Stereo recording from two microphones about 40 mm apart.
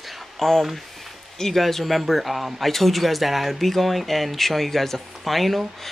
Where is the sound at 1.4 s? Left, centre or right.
Centre.